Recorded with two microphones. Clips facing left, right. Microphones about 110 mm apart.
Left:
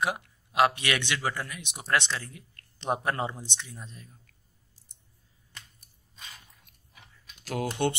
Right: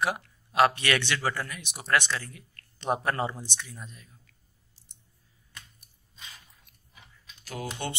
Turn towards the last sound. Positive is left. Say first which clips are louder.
# left 7 dB
turn(degrees=65)  # may be behind; listen again after turning